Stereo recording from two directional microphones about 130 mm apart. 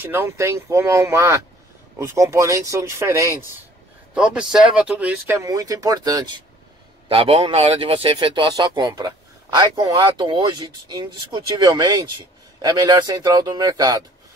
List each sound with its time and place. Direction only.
0.0 s speech: 15° right (ahead or behind)
4.1 s speech: 5° right (ahead or behind); by 6.4 s 35° right (ahead or behind)
7.1 s a man's voice: 45° right (ahead or behind); by 14.0 s 30° right (ahead or behind)